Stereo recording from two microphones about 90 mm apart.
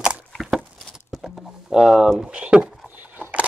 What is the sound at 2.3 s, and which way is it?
Speech, 10° right (ahead or behind).